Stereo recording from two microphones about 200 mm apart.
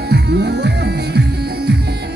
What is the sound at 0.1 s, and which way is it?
Music, 55° right (ahead or behind).